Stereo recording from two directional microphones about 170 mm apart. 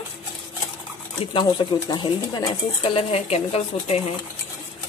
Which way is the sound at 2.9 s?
35° left (ahead or behind).